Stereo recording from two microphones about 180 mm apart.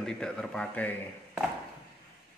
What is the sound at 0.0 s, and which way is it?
Speech, 5° left (ahead or behind).